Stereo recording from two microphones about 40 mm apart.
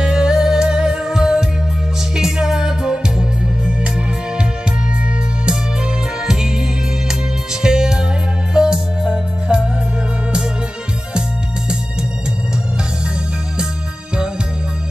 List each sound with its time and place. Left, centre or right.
0.0 s music: centre
7.6 s music: centre
9.5 s music: right